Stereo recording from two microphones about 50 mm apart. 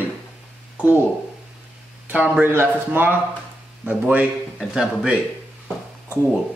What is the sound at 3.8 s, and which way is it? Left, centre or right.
Speech, right.